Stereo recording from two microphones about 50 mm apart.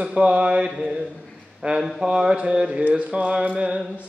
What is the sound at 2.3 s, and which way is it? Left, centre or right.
Speech, centre.